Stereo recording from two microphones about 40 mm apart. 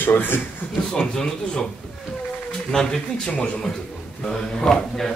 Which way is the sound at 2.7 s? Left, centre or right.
Centre.